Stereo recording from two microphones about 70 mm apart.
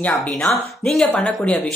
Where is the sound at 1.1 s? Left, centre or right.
Centre.